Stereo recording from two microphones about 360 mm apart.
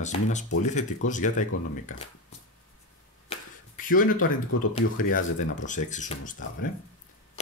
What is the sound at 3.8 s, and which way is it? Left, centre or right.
Speech, left.